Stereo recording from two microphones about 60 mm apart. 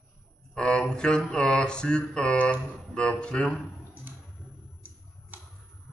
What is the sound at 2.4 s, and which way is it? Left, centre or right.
Speech, centre.